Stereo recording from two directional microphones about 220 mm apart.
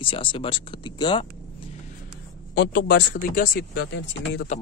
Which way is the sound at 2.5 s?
45° left (ahead or behind).